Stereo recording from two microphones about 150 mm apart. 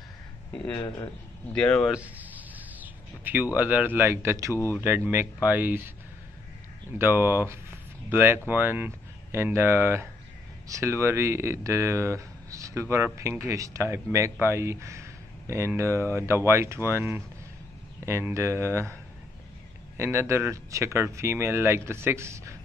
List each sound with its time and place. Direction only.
0.7 s speech: 25° left (ahead or behind)
1.5 s speech: 5° left (ahead or behind)
2.0 s a sound: 10° right (ahead or behind)
3.5 s speech: 10° right (ahead or behind)
7.0 s speech: 15° right (ahead or behind)
20.0 s speech: 15° right (ahead or behind)